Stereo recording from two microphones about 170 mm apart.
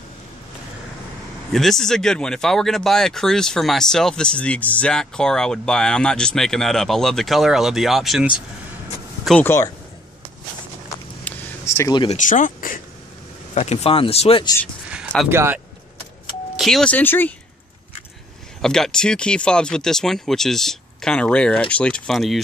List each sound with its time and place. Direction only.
1.5 s speech: centre (ahead or behind)
11.2 s a sound: 15° left (ahead or behind)
12.2 s speech: 50° left (ahead or behind)
13.6 s speech: 40° left (ahead or behind)
14.9 s speech: 5° right (ahead or behind)
16.5 s speech: centre (ahead or behind)
18.6 s speech: 5° left (ahead or behind)